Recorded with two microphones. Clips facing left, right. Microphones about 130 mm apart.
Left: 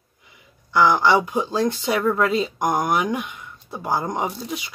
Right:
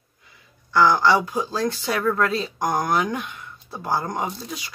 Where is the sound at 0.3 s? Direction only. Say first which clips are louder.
Even; 15° left (ahead or behind).